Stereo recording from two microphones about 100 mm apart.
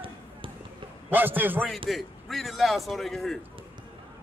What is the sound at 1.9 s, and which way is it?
A man's voice, centre (ahead or behind).